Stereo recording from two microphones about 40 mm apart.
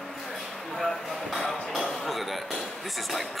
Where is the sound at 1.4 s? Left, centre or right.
Centre.